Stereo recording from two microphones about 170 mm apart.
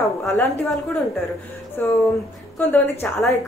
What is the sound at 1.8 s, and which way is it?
A woman's voice, 10° left (ahead or behind).